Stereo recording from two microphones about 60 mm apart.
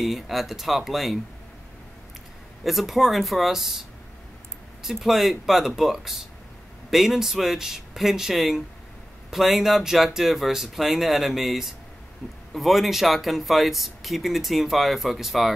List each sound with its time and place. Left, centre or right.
0.0 s speech: centre
2.6 s speech: centre
4.8 s speech: centre